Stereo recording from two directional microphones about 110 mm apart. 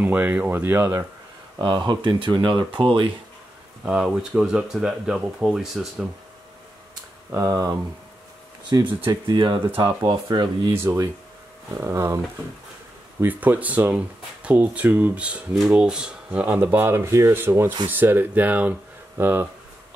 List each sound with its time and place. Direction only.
0.0 s speech: 15° right (ahead or behind)
1.6 s speech: 45° right (ahead or behind)
3.8 s speech: 10° right (ahead or behind)
7.3 s speech: 35° right (ahead or behind)
8.6 s speech: 45° right (ahead or behind)
10.7 s speech: 20° right (ahead or behind)
13.2 s speech: 15° right (ahead or behind)